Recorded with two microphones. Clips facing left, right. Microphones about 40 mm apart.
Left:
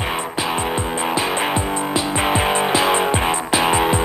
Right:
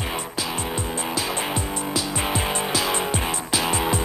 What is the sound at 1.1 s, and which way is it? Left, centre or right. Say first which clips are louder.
Music: left 6 dB; left.